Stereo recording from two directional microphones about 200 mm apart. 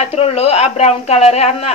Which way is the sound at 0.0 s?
30° left (ahead or behind).